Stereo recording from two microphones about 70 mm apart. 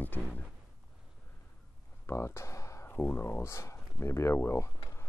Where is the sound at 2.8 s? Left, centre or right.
Left.